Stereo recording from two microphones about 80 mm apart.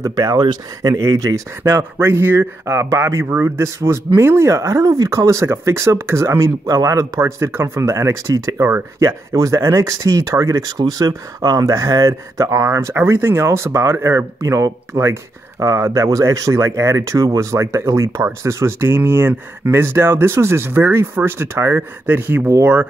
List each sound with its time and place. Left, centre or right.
0.0 s speech: right
1.7 s speech: right
9.3 s speech: right
10.8 s speech: right